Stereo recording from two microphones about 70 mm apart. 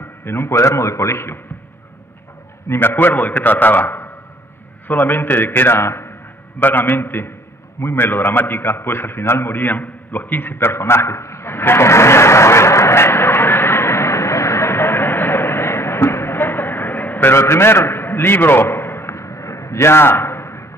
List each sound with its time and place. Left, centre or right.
0.2 s a man's voice: left
2.7 s a man's voice: left
7.8 s a sound: left